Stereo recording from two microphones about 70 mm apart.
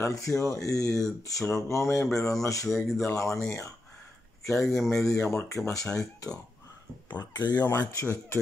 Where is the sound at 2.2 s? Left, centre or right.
Left.